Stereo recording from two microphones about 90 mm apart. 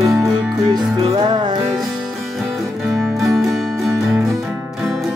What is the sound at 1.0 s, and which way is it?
Music, 55° right (ahead or behind).